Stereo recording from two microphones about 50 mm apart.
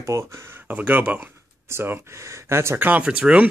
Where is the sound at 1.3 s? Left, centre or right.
Right.